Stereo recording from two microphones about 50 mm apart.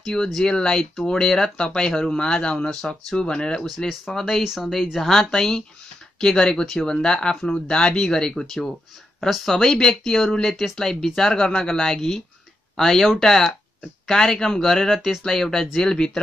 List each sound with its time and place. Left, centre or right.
0.0 s speech: centre
3.6 s speech: centre
9.6 s speech: centre